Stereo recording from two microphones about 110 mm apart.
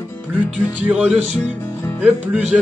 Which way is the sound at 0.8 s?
15° right (ahead or behind).